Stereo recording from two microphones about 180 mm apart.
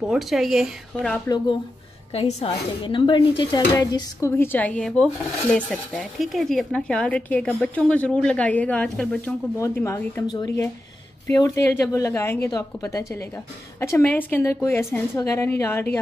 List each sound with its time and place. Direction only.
0.1 s speech: centre (ahead or behind)
1.2 s speech: 25° left (ahead or behind)
2.1 s speech: 35° left (ahead or behind); by 16.0 s 15° left (ahead or behind)